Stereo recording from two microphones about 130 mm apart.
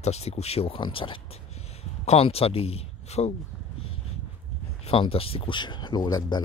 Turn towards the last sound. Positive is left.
turn(degrees=30)  # may be behind; listen again after turning